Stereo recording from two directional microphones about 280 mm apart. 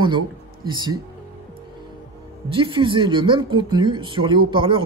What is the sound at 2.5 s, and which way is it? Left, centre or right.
A woman's voice, centre.